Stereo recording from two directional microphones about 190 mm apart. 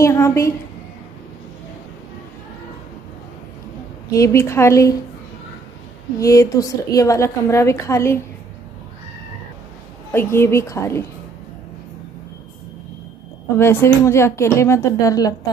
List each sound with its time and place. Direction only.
0.0 s a woman's voice: 15° left (ahead or behind)
4.1 s a woman's voice: 15° left (ahead or behind)
6.1 s a woman's voice: 15° left (ahead or behind)
10.1 s a woman's voice: 15° left (ahead or behind)
13.6 s a woman's voice: 10° left (ahead or behind)